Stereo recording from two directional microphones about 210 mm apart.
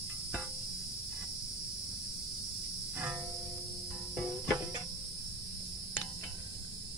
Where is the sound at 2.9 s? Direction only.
10° right (ahead or behind).